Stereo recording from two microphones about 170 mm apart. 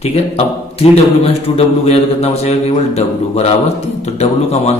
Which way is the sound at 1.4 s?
35° left (ahead or behind).